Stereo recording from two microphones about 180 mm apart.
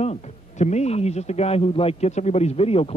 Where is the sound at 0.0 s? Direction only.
40° left (ahead or behind).